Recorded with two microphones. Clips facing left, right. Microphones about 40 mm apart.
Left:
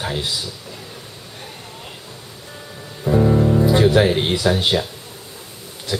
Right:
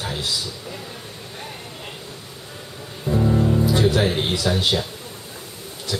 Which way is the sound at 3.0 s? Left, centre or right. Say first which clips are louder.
Left 4 dB; centre.